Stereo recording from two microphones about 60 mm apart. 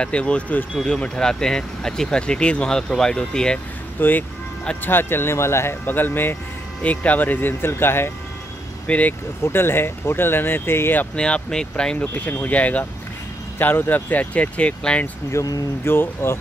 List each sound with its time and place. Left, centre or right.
0.0 s speech: centre
4.0 s speech: left
5.9 s speech: left
6.8 s speech: left
8.8 s speech: left
9.4 s speech: left
11.1 s speech: centre
12.0 s speech: left
15.3 s speech: left
15.8 s speech: left